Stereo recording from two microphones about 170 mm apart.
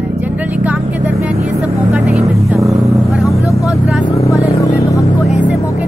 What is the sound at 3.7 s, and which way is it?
Vehicle, centre (ahead or behind).